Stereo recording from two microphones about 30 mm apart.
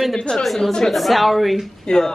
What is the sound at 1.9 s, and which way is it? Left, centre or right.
Speech, centre.